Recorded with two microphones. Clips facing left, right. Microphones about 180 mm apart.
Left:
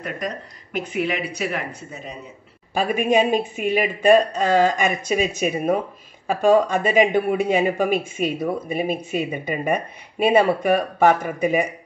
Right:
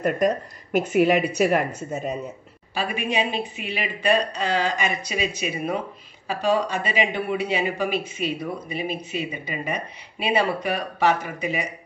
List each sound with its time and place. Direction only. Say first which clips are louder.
0.7 s a woman's voice: right 6 dB; 45° right (ahead or behind)
2.7 s speech: left 7 dB; 45° left (ahead or behind)